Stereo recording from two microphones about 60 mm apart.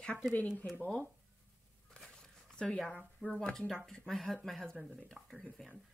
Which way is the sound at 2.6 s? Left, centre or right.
Centre.